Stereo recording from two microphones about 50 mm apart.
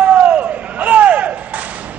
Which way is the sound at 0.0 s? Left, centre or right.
Right.